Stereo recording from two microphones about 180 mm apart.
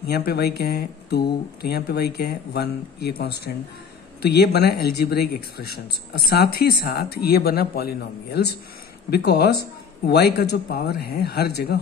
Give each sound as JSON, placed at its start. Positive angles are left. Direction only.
{"t": 0.0, "sound": "speech", "side_deg": 60}